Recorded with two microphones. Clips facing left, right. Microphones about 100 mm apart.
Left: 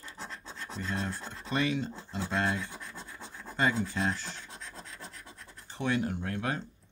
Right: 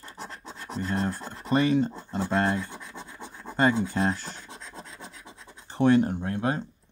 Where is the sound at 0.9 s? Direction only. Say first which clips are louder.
Right 6 dB; 45° right (ahead or behind).